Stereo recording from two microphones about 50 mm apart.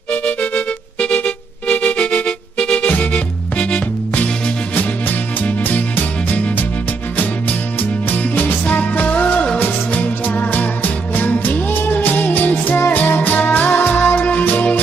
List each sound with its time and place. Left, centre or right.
0.1 s music: left
8.1 s music: left